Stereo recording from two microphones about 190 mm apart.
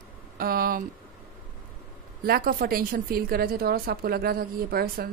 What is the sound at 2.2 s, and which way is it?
A woman's voice, 55° right (ahead or behind).